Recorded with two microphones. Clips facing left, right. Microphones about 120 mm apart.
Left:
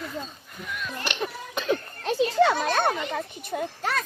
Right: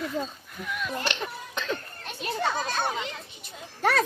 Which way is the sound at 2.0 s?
90° left.